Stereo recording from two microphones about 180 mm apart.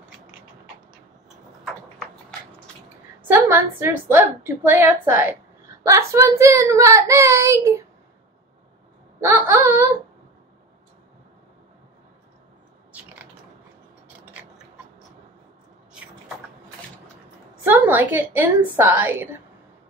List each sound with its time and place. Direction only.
3.2 s a woman's voice: 10° right (ahead or behind)
9.2 s a woman's voice: 15° right (ahead or behind)
17.6 s a woman's voice: 10° right (ahead or behind)